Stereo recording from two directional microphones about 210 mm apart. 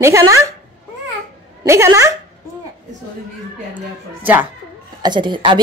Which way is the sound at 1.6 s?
15° right (ahead or behind).